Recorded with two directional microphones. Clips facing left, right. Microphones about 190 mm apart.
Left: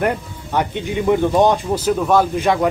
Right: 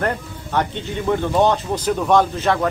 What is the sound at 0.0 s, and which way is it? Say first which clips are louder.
A man's voice: left 3 dB; 10° left (ahead or behind).